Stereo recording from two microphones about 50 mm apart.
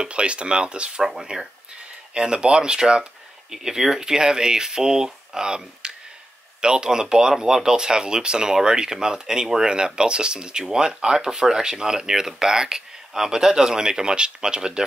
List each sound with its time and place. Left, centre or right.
0.0 s speech: right